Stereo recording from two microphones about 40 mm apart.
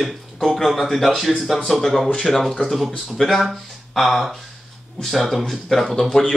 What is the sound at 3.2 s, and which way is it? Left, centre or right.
Speech, centre.